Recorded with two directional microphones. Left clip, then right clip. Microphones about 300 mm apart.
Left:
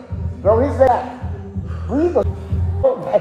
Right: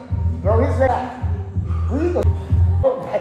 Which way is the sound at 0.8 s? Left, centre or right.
Left.